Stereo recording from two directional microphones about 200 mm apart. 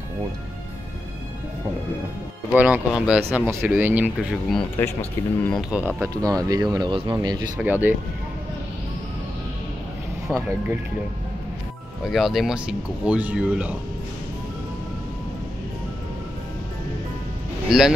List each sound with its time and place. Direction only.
2.5 s speech: 5° right (ahead or behind)
5.5 s speech: 5° right (ahead or behind)
10.3 s speech: 10° right (ahead or behind)
12.1 s speech: centre (ahead or behind)
17.6 s speech: centre (ahead or behind)